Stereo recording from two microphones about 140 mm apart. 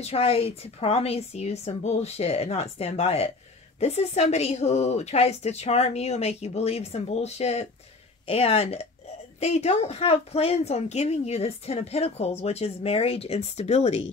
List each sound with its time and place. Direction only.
0.0 s a woman's voice: 45° left (ahead or behind)